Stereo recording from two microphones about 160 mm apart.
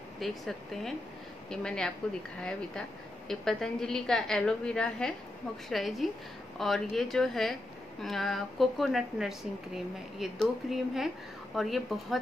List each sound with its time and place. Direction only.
0.2 s a woman's voice: centre (ahead or behind)
3.3 s a woman's voice: 5° left (ahead or behind)